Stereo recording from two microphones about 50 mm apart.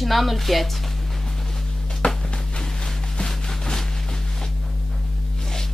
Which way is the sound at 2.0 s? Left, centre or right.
Centre.